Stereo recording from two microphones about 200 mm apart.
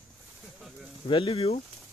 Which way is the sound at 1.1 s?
30° left (ahead or behind).